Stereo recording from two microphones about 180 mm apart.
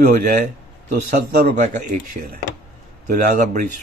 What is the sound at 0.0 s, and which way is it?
Speech, 45° right (ahead or behind).